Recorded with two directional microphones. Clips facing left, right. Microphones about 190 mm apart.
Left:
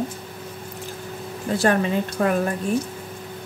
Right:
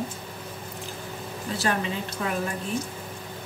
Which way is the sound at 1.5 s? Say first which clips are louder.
Left 8 dB; 50° left (ahead or behind).